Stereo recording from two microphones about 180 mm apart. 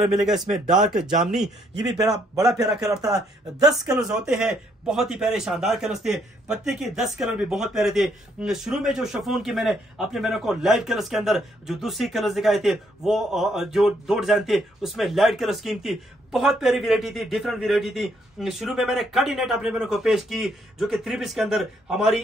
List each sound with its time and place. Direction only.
0.0 s a man's voice: 5° right (ahead or behind)
3.0 s speech: 20° right (ahead or behind)
3.9 s a man's voice: centre (ahead or behind)